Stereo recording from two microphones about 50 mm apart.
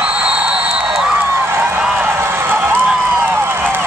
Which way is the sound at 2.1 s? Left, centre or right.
Right.